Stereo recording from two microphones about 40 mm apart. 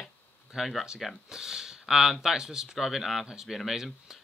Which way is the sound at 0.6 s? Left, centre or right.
Centre.